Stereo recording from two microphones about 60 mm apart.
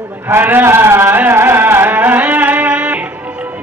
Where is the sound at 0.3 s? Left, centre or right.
Right.